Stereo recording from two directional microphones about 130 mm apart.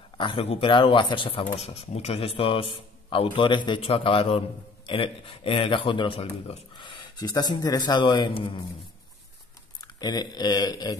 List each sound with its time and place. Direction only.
0.2 s speech: 45° left (ahead or behind)
6.8 s a man's voice: 35° left (ahead or behind)
9.9 s a man's voice: 30° left (ahead or behind)